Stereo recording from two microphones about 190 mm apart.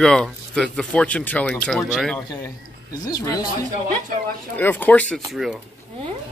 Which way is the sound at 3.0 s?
20° left (ahead or behind).